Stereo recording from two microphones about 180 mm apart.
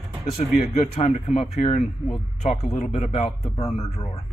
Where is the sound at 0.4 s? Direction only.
35° left (ahead or behind).